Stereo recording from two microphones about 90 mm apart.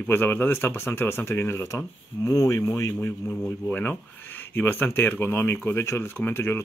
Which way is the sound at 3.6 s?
20° left (ahead or behind).